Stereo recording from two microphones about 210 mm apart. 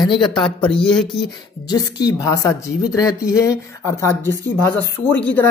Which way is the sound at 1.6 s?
20° left (ahead or behind).